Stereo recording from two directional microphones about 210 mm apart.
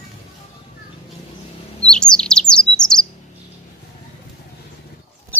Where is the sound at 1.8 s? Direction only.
5° left (ahead or behind).